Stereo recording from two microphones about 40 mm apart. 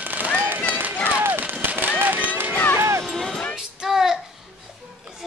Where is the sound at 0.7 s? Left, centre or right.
Right.